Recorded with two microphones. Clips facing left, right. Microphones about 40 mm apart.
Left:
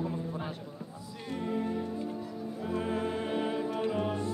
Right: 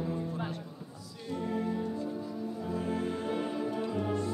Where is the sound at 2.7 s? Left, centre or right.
Left.